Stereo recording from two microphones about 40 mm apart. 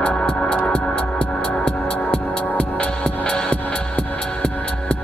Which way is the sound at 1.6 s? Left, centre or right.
Left.